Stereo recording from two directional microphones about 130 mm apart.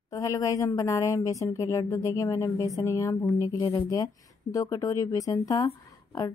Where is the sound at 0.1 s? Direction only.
25° left (ahead or behind).